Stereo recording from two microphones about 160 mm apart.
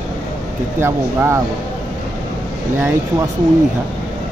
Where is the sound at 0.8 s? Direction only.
15° right (ahead or behind).